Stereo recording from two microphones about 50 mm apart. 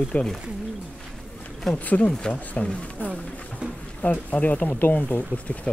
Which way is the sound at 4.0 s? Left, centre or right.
Left.